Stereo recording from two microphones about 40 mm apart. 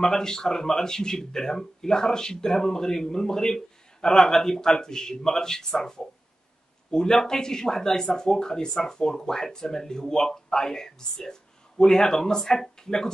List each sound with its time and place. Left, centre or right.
0.0 s speech: centre